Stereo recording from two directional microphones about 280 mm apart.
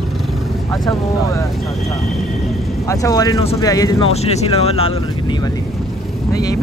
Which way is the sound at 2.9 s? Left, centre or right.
Centre.